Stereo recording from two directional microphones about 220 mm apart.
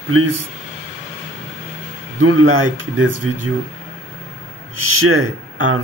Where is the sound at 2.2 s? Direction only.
65° right (ahead or behind).